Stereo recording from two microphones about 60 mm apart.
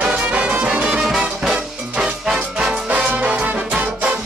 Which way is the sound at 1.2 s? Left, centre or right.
Centre.